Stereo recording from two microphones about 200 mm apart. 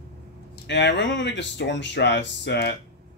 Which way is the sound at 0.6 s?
65° left (ahead or behind).